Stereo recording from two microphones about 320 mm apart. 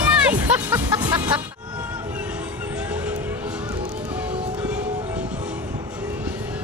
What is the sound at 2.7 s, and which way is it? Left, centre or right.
Music, centre.